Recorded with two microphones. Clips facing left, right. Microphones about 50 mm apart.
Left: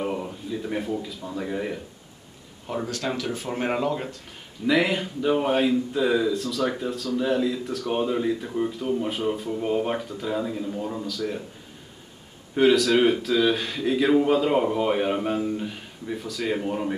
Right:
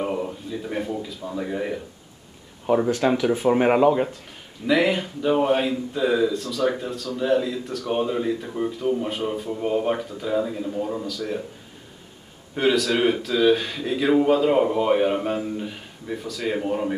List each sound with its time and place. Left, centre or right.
0.0 s speech: centre
2.8 s speech: right
4.6 s a man's voice: centre
12.5 s a man's voice: centre